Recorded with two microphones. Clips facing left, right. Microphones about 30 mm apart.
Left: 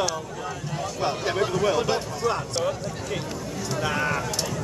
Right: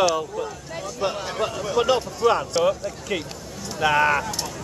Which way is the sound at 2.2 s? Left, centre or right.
Right.